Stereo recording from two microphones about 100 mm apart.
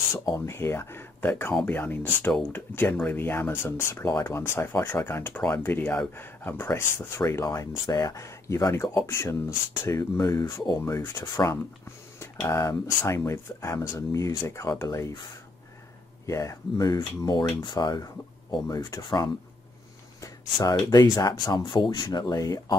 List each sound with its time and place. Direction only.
0.1 s speech: 35° left (ahead or behind)
10.1 s speech: 40° left (ahead or behind)
16.3 s speech: 35° left (ahead or behind)
20.2 s a sound: 35° left (ahead or behind)
20.8 s speech: 35° left (ahead or behind); by 22.0 s 50° left (ahead or behind)
22.0 s speech: 40° left (ahead or behind)